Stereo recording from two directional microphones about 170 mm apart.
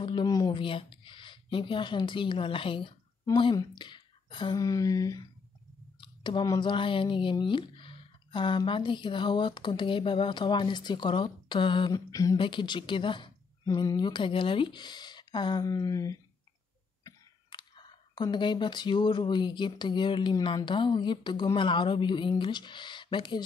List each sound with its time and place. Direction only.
0.0 s speech: 25° left (ahead or behind)